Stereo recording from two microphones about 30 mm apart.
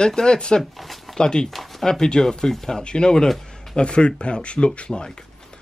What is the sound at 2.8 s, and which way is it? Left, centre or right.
Speech, left.